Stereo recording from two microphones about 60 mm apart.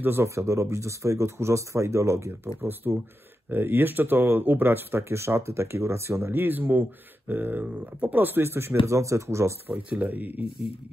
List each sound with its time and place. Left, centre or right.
0.0 s speech: right
0.3 s speech: right
2.8 s speech: right
6.3 s speech: right
9.8 s speech: right